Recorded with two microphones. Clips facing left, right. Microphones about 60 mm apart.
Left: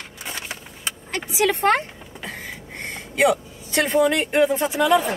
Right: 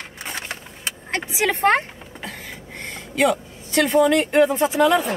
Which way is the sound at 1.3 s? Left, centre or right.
Right.